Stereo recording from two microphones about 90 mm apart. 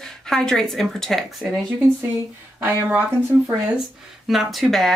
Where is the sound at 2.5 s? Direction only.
25° right (ahead or behind).